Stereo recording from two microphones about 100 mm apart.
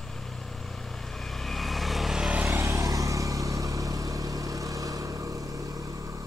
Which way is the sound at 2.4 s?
25° right (ahead or behind).